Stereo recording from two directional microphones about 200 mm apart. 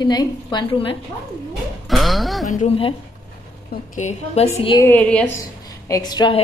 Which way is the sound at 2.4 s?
35° left (ahead or behind).